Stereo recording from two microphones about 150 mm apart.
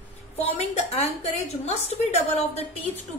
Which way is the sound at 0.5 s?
45° left (ahead or behind).